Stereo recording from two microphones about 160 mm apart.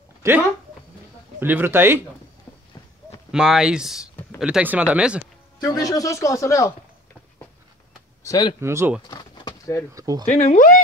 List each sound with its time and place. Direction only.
0.2 s speech: 20° right (ahead or behind)
3.3 s speech: 5° right (ahead or behind)
5.6 s speech: 20° left (ahead or behind)
8.2 s speech: 25° left (ahead or behind)
8.5 s speech: 15° right (ahead or behind)
9.1 s a sound: 25° left (ahead or behind)
9.9 s speech: 20° right (ahead or behind)
10.2 s speech: 50° left (ahead or behind)